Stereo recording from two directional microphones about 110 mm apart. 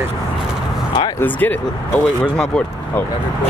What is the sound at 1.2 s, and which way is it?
Speech, 15° left (ahead or behind).